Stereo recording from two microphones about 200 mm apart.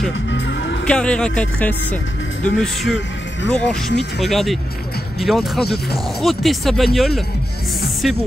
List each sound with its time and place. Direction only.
0.3 s music: 65° left (ahead or behind)
0.8 s speech: 5° left (ahead or behind)